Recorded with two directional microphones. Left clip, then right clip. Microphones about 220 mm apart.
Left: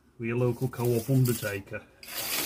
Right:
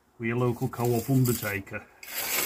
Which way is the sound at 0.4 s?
10° right (ahead or behind).